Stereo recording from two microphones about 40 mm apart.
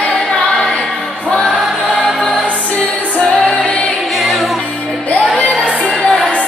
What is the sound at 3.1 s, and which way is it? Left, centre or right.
Music, left.